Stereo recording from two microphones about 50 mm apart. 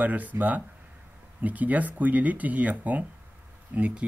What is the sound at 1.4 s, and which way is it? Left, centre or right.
Speech, right.